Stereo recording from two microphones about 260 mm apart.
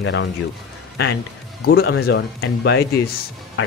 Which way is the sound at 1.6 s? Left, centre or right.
Left.